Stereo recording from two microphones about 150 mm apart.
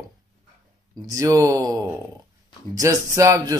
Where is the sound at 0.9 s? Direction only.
25° right (ahead or behind).